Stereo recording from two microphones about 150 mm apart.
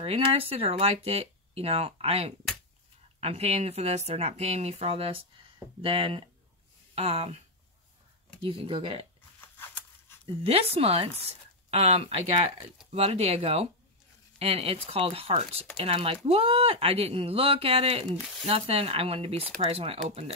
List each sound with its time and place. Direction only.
0.0 s speech: 40° right (ahead or behind)
9.6 s a sound: 15° left (ahead or behind)
10.4 s speech: 40° right (ahead or behind)